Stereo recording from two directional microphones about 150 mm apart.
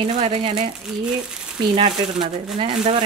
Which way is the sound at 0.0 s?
45° right (ahead or behind).